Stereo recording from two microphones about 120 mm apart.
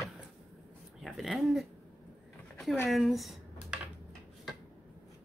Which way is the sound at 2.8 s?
Centre (ahead or behind).